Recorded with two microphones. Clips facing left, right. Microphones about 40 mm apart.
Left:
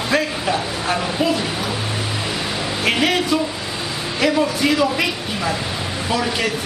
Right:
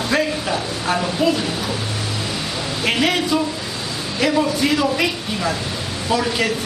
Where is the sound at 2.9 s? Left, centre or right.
Centre.